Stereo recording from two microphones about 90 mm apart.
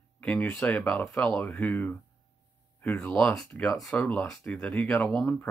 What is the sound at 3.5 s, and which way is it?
Speech, 15° left (ahead or behind).